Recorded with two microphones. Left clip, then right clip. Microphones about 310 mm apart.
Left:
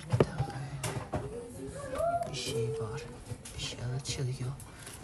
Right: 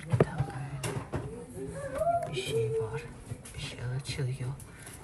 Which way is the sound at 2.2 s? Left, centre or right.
Centre.